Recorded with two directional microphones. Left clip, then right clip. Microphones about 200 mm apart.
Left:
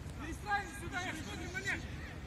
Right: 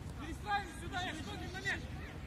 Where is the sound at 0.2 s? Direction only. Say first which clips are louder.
Left 1 dB; 10° right (ahead or behind).